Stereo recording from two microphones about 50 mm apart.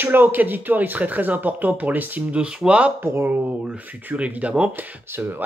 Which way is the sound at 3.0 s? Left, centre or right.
Right.